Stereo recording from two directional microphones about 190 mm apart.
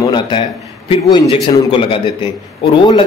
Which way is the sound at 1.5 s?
30° left (ahead or behind).